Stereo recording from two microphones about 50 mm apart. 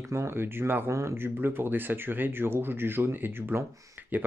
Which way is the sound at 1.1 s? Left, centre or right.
Right.